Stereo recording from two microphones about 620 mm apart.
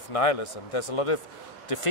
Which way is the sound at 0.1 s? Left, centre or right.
Left.